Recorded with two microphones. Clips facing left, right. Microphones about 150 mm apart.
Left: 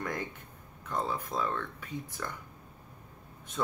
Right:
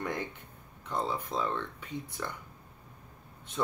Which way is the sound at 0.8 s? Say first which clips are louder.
Even; 25° right (ahead or behind).